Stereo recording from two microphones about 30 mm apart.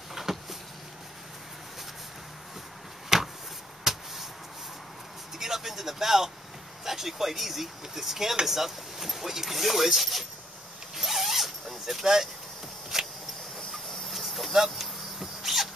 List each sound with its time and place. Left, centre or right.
0.1 s a sound: centre
3.1 s a sound: centre
3.9 s vehicle: centre
5.4 s a sound: centre
6.8 s speech: centre
11.0 s zipper: centre
12.9 s vehicle: centre
14.1 s insect: centre
14.5 s vehicle: centre